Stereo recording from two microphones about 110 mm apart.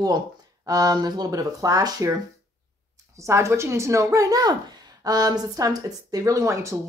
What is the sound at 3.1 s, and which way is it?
Speech, 25° right (ahead or behind).